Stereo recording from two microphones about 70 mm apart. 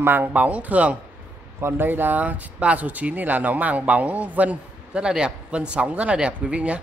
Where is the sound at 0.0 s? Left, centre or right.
Right.